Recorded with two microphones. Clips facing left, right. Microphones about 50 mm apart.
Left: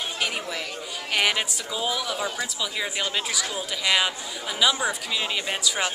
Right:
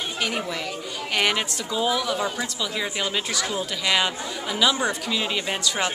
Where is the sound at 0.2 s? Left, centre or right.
Centre.